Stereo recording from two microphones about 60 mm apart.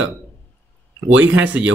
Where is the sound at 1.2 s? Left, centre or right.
Right.